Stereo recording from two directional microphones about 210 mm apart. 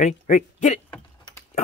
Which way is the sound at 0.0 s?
35° left (ahead or behind).